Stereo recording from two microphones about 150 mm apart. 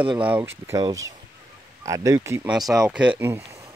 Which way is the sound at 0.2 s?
10° right (ahead or behind).